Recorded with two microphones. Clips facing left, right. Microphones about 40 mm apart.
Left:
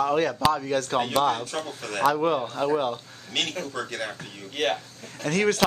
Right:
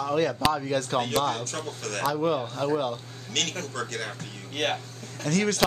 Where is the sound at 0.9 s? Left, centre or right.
Centre.